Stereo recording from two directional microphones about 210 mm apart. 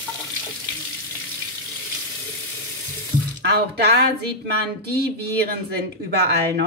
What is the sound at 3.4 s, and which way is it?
Speech, 50° right (ahead or behind).